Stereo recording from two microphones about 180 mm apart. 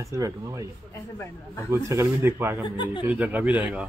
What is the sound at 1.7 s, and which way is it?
Speech, 15° right (ahead or behind).